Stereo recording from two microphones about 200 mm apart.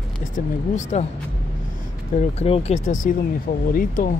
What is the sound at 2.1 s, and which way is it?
Speech, 30° left (ahead or behind).